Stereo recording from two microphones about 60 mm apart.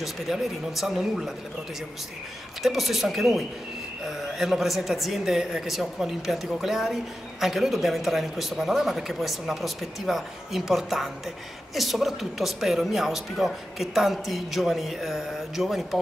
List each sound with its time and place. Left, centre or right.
0.0 s speech: centre
2.6 s speech: centre